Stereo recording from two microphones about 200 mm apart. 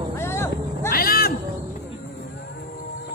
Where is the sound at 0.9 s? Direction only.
50° left (ahead or behind).